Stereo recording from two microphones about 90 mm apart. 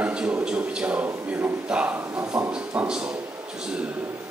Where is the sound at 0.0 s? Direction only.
15° right (ahead or behind).